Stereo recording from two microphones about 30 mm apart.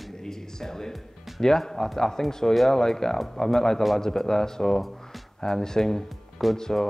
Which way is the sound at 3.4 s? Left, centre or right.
Centre.